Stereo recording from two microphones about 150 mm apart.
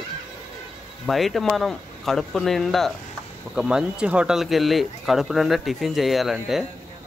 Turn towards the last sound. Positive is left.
turn(degrees=0)  # may be behind; listen again after turning